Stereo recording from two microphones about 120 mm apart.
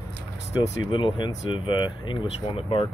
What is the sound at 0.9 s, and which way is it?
Speech, 45° left (ahead or behind).